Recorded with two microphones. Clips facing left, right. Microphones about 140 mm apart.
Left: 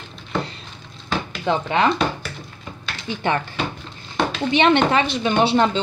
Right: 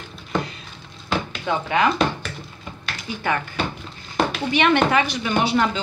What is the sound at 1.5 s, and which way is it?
Speech, 30° left (ahead or behind).